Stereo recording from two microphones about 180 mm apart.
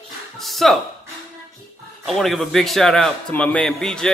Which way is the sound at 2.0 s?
Centre (ahead or behind).